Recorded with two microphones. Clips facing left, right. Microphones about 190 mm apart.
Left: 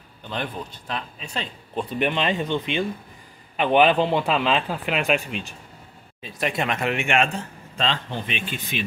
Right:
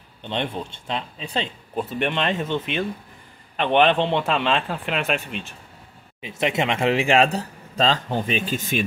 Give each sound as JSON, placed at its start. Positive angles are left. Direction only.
{"t": 0.2, "sound": "speech", "side_deg": -25}
{"t": 1.8, "sound": "a man's voice", "side_deg": 0}
{"t": 6.2, "sound": "speech", "side_deg": -20}